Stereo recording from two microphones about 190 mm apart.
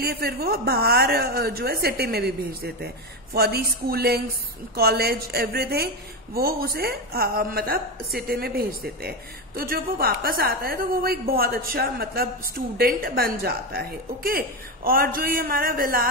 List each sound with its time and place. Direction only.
0.0 s a woman's voice: 55° right (ahead or behind)